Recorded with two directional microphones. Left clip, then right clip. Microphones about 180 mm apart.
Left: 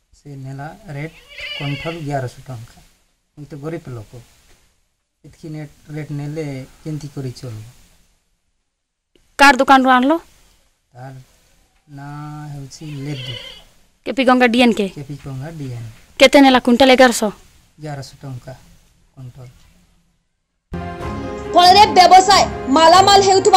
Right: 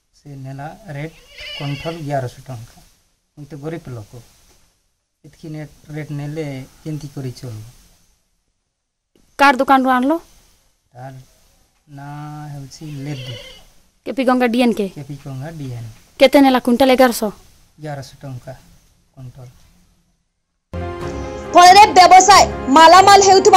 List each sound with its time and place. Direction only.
0.2 s a woman's voice: 5° right (ahead or behind)
1.3 s bleat: 25° right (ahead or behind)
2.0 s a woman's voice: 5° right (ahead or behind)
5.4 s a woman's voice: 5° right (ahead or behind)
9.4 s a woman's voice: 5° left (ahead or behind)
13.1 s speech: 25° right (ahead or behind)
14.0 s a woman's voice: centre (ahead or behind)
21.5 s a woman's voice: 10° right (ahead or behind)